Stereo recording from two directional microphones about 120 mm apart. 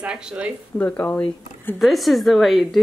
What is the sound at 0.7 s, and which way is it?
Speech, 15° left (ahead or behind).